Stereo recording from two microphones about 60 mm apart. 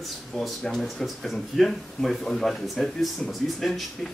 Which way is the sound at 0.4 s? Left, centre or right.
Centre.